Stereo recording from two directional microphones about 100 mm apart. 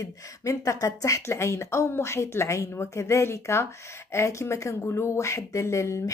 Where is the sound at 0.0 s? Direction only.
35° left (ahead or behind).